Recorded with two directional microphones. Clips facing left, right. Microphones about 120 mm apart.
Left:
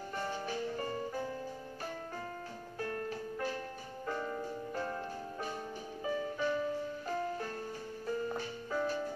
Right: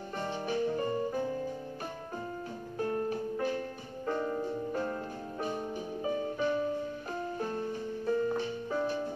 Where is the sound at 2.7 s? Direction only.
25° right (ahead or behind).